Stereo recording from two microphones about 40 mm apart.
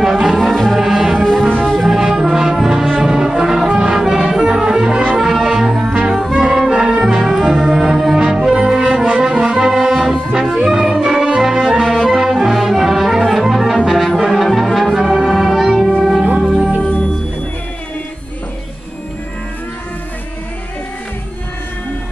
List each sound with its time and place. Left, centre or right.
0.0 s music: centre
0.3 s music: centre
1.1 s music: centre
1.9 s music: centre
5.3 s brass instrument: centre
5.8 s music: centre
6.1 s brass instrument: centre
6.7 s music: centre
7.2 s music: centre
16.8 s music: left